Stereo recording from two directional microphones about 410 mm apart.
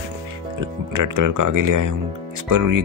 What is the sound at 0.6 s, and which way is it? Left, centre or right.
Speech, right.